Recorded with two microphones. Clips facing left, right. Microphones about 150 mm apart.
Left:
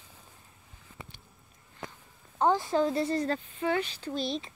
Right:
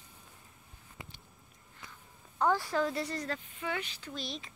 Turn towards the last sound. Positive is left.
turn(degrees=30)  # may be behind; listen again after turning